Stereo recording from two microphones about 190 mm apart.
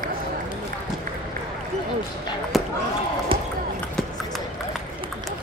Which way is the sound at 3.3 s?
25° right (ahead or behind).